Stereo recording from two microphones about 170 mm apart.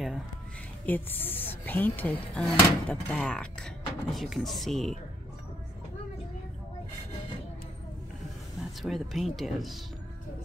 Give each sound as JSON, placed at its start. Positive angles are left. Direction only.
{"t": 0.8, "sound": "speech", "side_deg": 10}
{"t": 8.5, "sound": "speech", "side_deg": 0}